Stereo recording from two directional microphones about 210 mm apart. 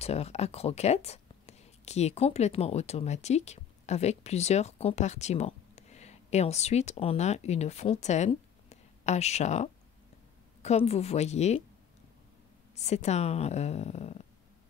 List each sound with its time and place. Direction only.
0.0 s speech: 30° left (ahead or behind)
12.7 s speech: 30° left (ahead or behind)